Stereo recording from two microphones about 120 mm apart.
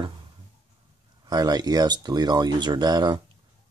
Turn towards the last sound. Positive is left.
turn(degrees=-35)  # may be behind; listen again after turning